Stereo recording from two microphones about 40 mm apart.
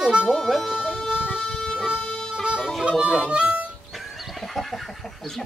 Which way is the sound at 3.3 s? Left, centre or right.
Right.